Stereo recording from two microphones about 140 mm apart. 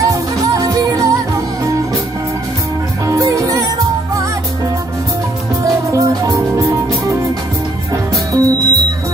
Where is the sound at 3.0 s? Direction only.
25° right (ahead or behind).